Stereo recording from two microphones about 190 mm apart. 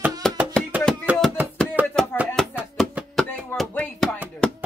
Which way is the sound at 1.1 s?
5° right (ahead or behind).